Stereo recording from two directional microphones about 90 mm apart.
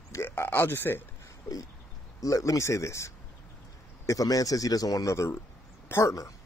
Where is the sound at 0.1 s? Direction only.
30° left (ahead or behind).